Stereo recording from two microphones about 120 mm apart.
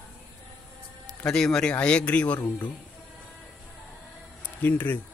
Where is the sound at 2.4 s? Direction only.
35° left (ahead or behind).